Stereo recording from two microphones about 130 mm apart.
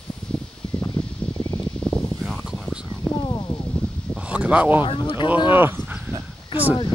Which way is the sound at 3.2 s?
30° left (ahead or behind).